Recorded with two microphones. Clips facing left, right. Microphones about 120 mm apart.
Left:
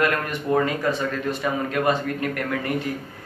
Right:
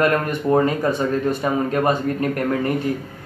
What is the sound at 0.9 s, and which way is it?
A man's voice, 45° right (ahead or behind).